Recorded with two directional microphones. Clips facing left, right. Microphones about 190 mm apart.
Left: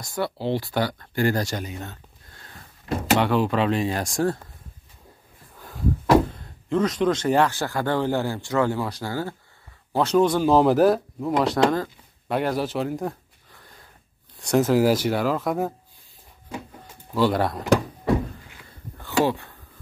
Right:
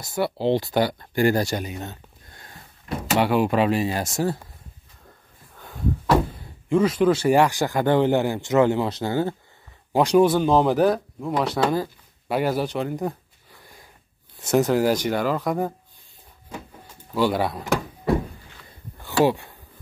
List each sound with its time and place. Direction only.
0.0 s speech: 10° right (ahead or behind)
0.4 s speech: 20° right (ahead or behind); by 4.4 s 5° right (ahead or behind)
5.6 s a sound: centre (ahead or behind)
6.3 s speech: 5° right (ahead or behind)
10.4 s speech: 5° left (ahead or behind)
13.6 s wheeze: 10° right (ahead or behind)
14.4 s speech: centre (ahead or behind)
17.1 s speech: centre (ahead or behind)
19.0 s a sound: 15° right (ahead or behind)